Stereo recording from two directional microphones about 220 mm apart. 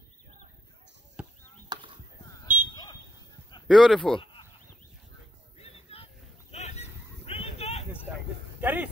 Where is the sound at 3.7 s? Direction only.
Centre (ahead or behind).